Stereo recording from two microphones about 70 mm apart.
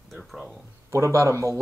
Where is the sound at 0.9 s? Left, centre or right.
Right.